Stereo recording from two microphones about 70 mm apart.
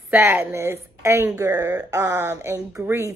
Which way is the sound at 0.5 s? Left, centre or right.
Right.